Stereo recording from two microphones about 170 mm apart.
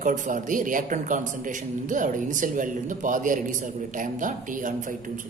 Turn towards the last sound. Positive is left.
turn(degrees=-50)  # may be behind; listen again after turning